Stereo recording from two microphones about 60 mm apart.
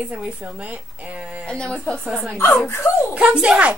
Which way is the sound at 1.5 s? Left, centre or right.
Centre.